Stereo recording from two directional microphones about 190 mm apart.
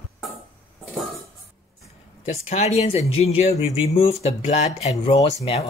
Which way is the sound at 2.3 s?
35° left (ahead or behind).